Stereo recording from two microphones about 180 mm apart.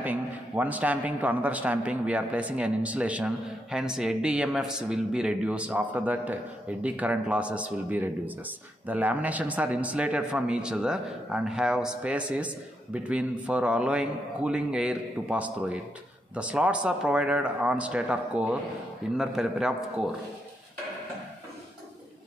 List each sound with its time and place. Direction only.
0.0 s a man's voice: 10° right (ahead or behind)